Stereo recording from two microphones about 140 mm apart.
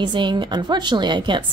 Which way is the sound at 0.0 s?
35° right (ahead or behind).